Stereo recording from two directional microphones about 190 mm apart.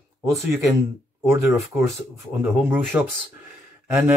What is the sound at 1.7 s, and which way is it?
Speech, 10° right (ahead or behind).